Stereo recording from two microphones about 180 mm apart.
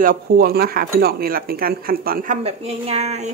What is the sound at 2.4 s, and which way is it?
Speech, 35° right (ahead or behind).